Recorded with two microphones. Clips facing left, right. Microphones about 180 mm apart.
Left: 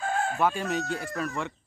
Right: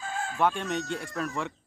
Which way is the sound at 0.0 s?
60° left (ahead or behind).